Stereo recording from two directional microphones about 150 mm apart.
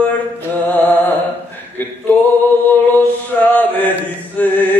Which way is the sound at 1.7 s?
10° left (ahead or behind).